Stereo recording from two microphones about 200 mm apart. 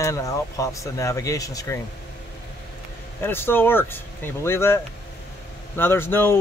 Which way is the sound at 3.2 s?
10° left (ahead or behind).